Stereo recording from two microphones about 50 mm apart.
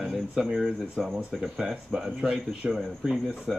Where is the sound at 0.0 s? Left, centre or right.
Centre.